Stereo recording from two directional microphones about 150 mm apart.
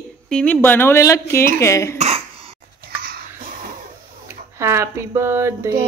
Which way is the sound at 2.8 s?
90° right.